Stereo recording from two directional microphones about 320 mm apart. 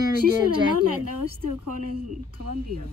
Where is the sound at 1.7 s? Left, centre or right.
Right.